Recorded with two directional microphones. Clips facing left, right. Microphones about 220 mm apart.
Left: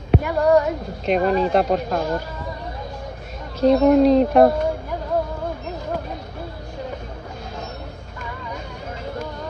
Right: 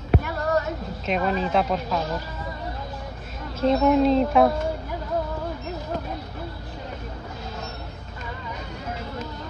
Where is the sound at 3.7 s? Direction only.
50° left (ahead or behind).